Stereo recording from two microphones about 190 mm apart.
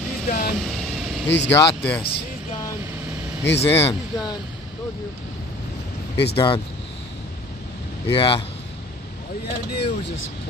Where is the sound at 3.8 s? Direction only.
20° left (ahead or behind).